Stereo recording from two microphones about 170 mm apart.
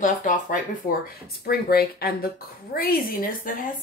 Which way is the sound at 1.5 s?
65° left (ahead or behind).